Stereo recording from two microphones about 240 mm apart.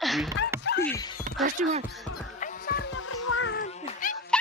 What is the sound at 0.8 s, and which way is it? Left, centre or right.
Music, centre.